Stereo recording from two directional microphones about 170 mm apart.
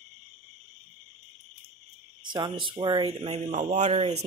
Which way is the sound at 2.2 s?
25° right (ahead or behind).